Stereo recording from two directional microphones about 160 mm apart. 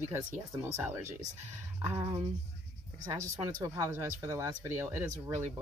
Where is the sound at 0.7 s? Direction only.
20° right (ahead or behind).